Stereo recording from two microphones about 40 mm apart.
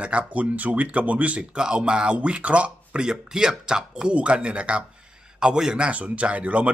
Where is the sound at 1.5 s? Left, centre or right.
Right.